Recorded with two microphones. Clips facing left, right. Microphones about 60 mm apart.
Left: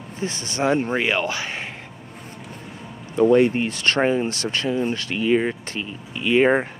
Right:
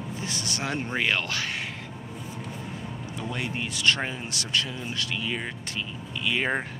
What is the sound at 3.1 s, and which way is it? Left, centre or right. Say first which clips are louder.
Speech: left 18 dB; left.